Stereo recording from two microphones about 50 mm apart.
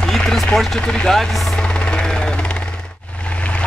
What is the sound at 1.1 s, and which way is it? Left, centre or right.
Speech, centre.